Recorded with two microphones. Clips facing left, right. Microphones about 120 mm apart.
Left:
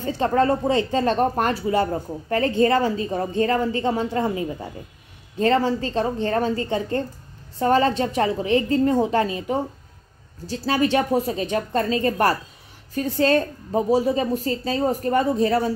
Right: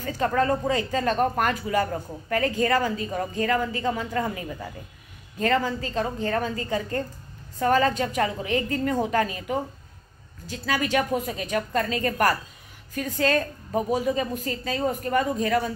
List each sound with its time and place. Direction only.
0.0 s a woman's voice: 30° left (ahead or behind)